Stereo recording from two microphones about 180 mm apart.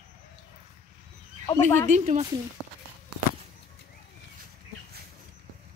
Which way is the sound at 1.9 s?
40° right (ahead or behind).